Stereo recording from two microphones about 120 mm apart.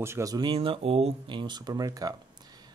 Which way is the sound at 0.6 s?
55° right (ahead or behind).